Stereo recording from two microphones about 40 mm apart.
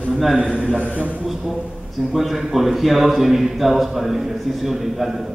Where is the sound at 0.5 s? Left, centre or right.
Centre.